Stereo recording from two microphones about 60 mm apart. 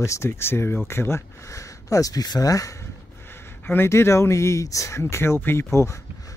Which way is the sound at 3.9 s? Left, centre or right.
Left.